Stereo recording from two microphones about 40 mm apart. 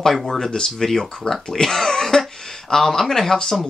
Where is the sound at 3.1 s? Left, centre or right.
Centre.